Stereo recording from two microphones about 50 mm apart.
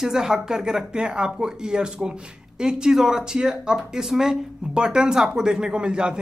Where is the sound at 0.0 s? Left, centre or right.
Centre.